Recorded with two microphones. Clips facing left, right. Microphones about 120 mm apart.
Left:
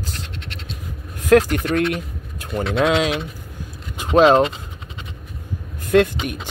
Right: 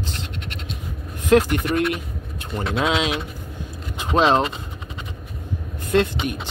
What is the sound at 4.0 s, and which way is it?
Vehicle, 10° left (ahead or behind).